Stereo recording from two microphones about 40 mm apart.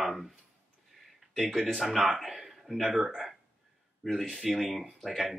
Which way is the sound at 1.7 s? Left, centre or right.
Centre.